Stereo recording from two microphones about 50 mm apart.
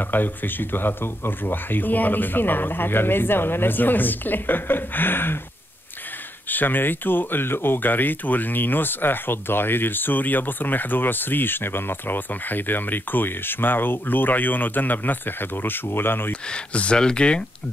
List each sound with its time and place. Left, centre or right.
0.0 s speech: left
6.5 s speech: left
16.3 s speech: left